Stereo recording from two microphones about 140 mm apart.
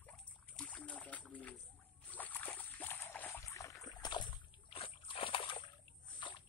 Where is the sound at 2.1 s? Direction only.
10° left (ahead or behind); by 6.4 s 35° left (ahead or behind).